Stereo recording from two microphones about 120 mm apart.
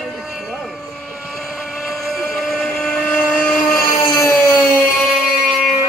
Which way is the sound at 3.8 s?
30° left (ahead or behind).